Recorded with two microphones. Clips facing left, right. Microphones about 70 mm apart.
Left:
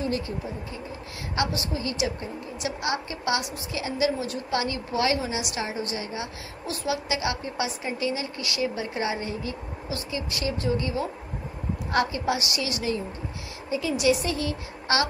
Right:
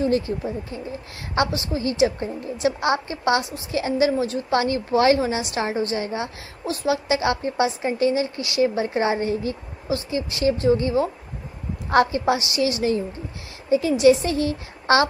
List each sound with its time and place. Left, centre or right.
1.3 s a woman's voice: right